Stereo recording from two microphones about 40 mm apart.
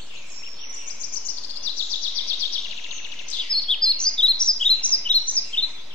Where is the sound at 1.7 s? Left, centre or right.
Left.